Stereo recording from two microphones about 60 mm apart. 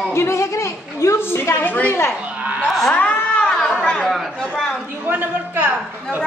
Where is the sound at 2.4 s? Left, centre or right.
Right.